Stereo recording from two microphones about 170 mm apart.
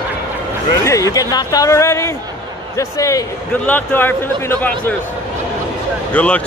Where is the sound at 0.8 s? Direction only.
20° left (ahead or behind).